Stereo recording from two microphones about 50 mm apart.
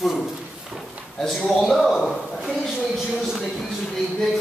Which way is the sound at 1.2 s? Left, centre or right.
Centre.